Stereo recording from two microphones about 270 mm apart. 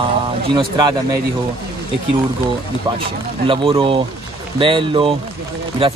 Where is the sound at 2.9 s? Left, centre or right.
Centre.